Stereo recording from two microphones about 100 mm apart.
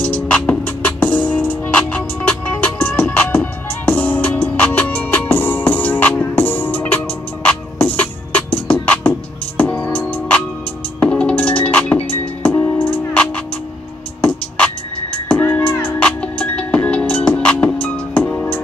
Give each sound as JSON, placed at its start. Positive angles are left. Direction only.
{"t": 0.0, "sound": "music", "side_deg": 10}
{"t": 15.2, "sound": "music", "side_deg": 20}